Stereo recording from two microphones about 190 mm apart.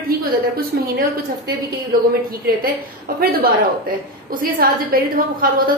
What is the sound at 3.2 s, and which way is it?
A woman's voice, 50° right (ahead or behind).